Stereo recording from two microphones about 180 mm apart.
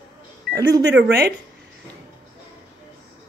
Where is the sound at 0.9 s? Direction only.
65° right (ahead or behind).